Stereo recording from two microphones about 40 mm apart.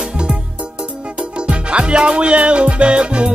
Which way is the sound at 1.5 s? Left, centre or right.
Right.